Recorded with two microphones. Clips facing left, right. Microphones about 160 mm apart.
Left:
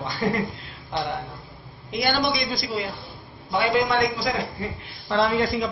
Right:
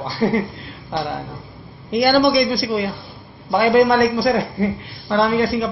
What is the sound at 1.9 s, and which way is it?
Speech, 45° right (ahead or behind).